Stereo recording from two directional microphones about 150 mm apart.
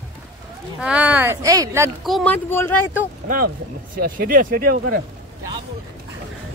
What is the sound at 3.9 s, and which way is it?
Speech, 75° right (ahead or behind).